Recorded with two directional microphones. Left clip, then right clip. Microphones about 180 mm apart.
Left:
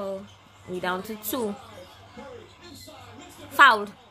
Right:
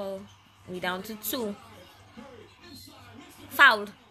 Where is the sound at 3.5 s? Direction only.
10° left (ahead or behind).